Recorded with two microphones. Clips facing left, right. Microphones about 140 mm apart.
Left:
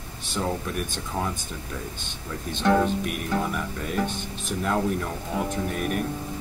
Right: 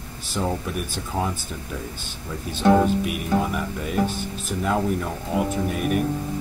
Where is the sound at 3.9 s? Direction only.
Centre (ahead or behind).